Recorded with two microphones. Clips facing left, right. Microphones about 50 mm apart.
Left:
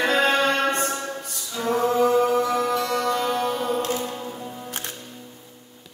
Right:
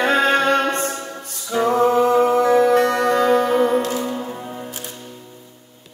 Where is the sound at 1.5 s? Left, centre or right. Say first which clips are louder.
Right 6 dB; right.